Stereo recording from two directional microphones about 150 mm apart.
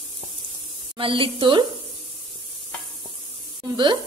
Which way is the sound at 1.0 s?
35° right (ahead or behind).